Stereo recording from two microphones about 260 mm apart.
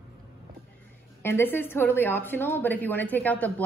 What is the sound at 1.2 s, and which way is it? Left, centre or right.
A woman's voice, centre.